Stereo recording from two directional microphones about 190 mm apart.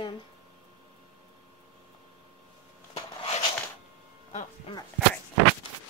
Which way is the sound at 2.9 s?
30° left (ahead or behind).